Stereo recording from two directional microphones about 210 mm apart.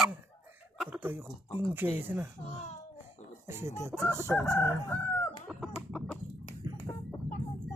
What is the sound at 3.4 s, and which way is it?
Speech, 15° right (ahead or behind).